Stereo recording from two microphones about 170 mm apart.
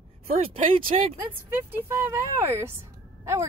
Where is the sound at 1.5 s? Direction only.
10° right (ahead or behind).